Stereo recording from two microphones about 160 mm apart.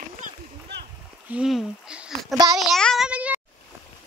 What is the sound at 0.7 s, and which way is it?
Splash, 90° right.